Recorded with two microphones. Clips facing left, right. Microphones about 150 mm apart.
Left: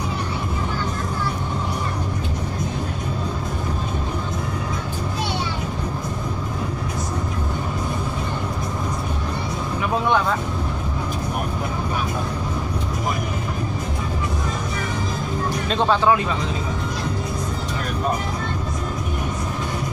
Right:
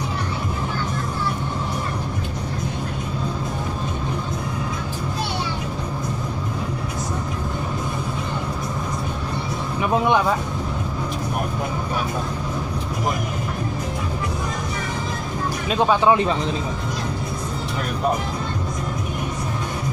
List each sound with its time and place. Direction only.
15.7 s speech: 15° right (ahead or behind)